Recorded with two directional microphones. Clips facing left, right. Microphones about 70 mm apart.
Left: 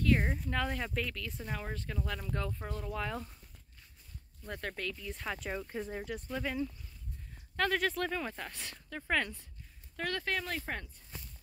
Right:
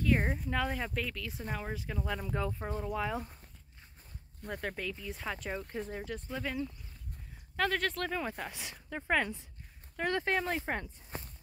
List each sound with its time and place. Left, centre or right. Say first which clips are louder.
0.0 s speech: even; centre
4.5 s speech: right 1 dB; centre; by 10.9 s right
11.1 s walk: right 6 dB; right